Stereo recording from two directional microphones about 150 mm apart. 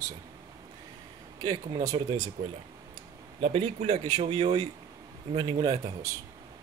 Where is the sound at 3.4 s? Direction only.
45° right (ahead or behind).